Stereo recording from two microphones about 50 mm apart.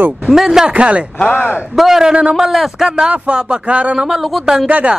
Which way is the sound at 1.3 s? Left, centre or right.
Left.